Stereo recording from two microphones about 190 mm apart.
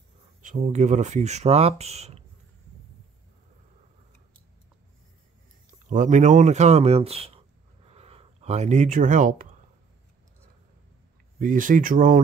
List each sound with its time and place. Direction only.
0.4 s speech: 40° right (ahead or behind)
5.9 s speech: 40° right (ahead or behind)
11.3 s speech: 45° right (ahead or behind)